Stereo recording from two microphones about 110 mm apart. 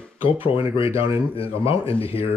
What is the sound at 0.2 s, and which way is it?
Speech, 55° left (ahead or behind).